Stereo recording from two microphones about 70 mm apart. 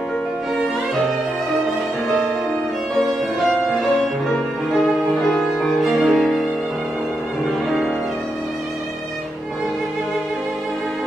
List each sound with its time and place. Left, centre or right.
4.8 s music: centre